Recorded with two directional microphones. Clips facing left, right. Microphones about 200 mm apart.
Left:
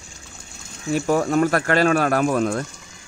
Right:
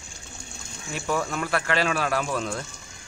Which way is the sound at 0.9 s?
40° left (ahead or behind).